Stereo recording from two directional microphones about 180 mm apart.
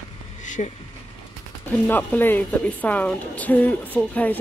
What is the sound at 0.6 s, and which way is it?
Speech, 45° left (ahead or behind).